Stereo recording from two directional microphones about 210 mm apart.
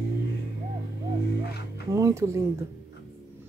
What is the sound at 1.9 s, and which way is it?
Speech, 15° right (ahead or behind).